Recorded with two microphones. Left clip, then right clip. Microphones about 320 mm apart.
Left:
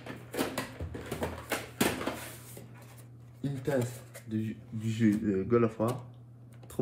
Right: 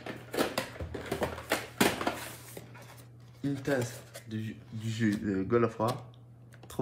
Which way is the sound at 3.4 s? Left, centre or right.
Centre.